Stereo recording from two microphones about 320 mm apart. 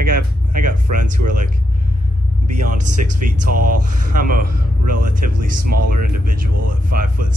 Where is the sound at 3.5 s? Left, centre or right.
Right.